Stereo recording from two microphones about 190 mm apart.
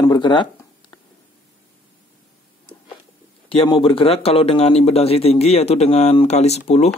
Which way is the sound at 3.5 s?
30° left (ahead or behind).